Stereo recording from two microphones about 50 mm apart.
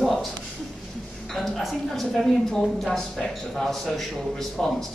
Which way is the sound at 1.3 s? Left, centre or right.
Centre.